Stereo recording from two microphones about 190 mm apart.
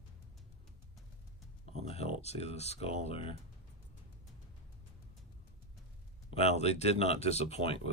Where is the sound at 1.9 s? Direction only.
30° left (ahead or behind).